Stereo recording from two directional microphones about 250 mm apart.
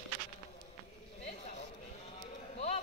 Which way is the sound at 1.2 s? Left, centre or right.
Left.